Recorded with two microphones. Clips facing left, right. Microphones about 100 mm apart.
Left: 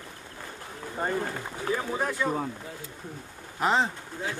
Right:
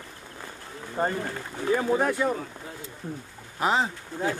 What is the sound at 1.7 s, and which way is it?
Speech, 50° right (ahead or behind).